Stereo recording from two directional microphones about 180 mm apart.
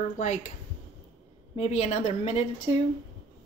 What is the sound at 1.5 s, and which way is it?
Speech, 35° left (ahead or behind).